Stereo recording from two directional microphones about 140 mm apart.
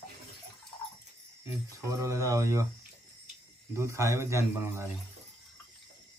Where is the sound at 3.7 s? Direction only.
20° right (ahead or behind).